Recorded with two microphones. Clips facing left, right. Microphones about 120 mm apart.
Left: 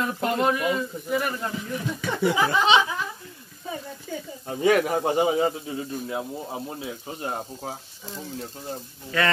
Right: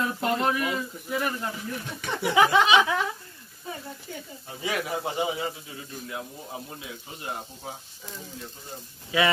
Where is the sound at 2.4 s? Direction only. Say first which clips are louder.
Right 9 dB; 80° right.